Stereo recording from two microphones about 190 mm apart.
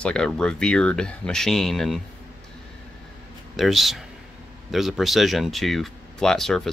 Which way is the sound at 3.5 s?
Centre (ahead or behind).